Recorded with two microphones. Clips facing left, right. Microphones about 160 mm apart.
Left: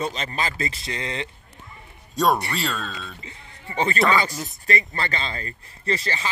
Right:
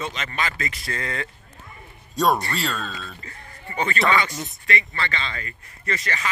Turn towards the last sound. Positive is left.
turn(degrees=30)  # may be behind; listen again after turning